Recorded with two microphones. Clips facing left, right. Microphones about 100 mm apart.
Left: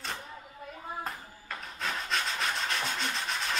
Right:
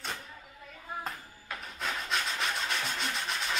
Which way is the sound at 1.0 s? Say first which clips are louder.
Left 1 dB; centre (ahead or behind).